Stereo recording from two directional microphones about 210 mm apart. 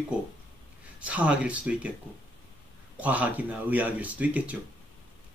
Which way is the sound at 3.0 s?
5° right (ahead or behind).